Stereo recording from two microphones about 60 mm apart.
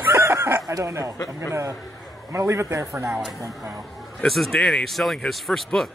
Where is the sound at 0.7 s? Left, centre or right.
Right.